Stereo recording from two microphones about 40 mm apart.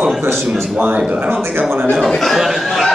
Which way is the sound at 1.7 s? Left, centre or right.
Right.